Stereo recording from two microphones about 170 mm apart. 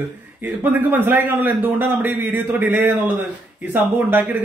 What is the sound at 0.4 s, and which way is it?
A man's voice, 10° right (ahead or behind).